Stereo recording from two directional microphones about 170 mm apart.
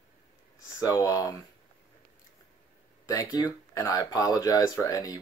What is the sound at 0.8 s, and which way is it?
Speech, 20° left (ahead or behind).